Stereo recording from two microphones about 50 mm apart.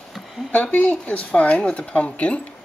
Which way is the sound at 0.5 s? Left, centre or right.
Left.